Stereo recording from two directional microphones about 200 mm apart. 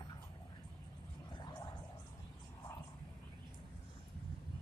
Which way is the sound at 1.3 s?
20° left (ahead or behind).